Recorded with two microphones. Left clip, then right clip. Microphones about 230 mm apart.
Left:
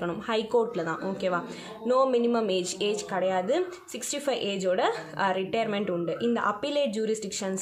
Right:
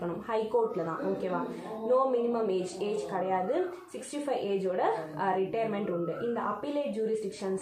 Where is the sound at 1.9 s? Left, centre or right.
Left.